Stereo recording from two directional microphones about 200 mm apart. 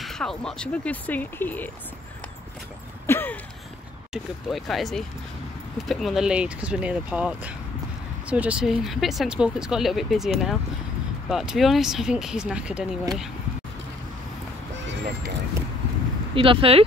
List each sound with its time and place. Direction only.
0.0 s speech: centre (ahead or behind)
3.1 s a sound: 10° left (ahead or behind)
4.1 s speech: centre (ahead or behind)
16.3 s speech: 25° right (ahead or behind)